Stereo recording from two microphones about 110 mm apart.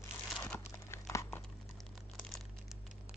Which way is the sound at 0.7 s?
25° left (ahead or behind).